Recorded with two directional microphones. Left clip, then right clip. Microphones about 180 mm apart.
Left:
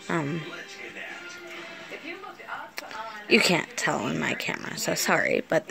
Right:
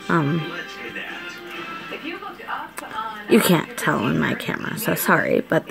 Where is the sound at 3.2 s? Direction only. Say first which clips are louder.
Right 3 dB; 20° right (ahead or behind).